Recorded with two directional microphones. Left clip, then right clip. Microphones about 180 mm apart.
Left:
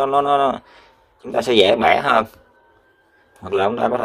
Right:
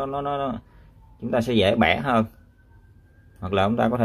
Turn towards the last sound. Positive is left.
turn(degrees=15)  # may be behind; listen again after turning